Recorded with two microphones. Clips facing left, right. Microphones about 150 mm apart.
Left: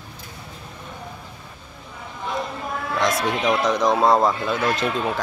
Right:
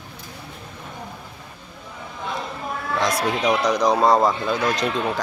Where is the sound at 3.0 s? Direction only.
Centre (ahead or behind).